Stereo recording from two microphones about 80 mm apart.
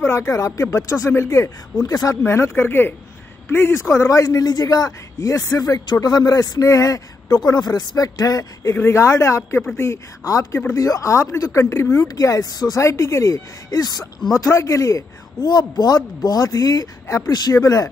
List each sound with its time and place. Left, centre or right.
0.0 s a man's voice: left
8.7 s a man's voice: left
14.3 s a man's voice: left